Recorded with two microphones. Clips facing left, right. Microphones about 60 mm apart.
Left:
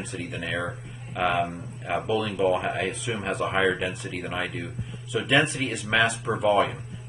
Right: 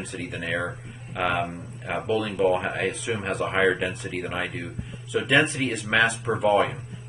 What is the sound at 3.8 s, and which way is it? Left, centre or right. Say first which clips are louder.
Speech: right 2 dB; centre.